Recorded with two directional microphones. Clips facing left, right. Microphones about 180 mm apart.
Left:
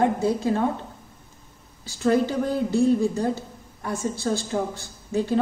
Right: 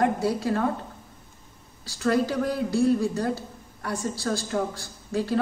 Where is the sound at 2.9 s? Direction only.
20° left (ahead or behind).